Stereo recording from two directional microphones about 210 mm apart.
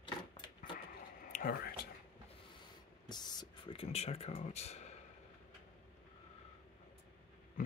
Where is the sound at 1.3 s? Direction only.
45° left (ahead or behind).